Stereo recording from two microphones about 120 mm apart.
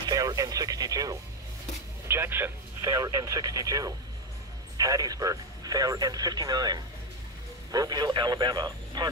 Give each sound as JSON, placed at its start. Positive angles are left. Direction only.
{"t": 0.1, "sound": "music", "side_deg": -30}
{"t": 2.0, "sound": "speech", "side_deg": -20}